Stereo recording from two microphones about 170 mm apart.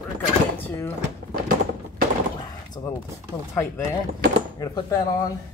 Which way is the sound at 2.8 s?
25° left (ahead or behind).